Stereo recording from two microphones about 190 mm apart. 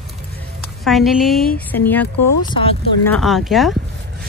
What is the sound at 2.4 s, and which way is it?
Speech, 25° left (ahead or behind).